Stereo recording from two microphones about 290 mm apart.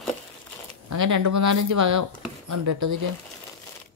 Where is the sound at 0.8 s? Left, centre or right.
Right.